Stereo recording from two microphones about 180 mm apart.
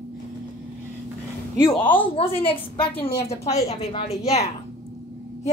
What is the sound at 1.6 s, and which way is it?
A woman's voice, 25° left (ahead or behind).